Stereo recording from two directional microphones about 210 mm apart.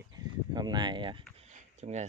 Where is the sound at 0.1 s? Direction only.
20° right (ahead or behind).